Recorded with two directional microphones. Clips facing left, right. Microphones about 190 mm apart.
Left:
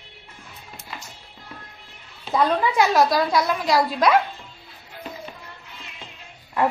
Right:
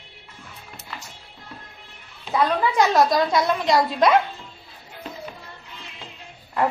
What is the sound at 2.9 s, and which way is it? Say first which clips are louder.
A woman's voice: even; centre (ahead or behind).